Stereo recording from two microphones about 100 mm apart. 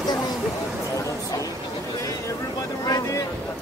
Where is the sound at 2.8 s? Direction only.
35° left (ahead or behind).